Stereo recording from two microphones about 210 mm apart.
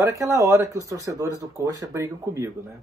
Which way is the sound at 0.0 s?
15° right (ahead or behind).